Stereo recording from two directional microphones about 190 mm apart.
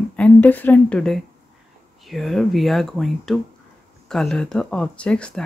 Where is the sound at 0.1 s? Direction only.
10° left (ahead or behind).